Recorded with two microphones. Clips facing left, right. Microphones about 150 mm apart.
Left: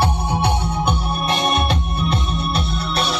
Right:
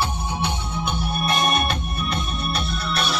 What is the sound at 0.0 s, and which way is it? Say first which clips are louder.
Music: left 6 dB; 65° left (ahead or behind).